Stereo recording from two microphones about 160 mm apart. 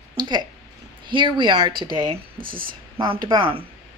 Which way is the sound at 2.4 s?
65° right (ahead or behind).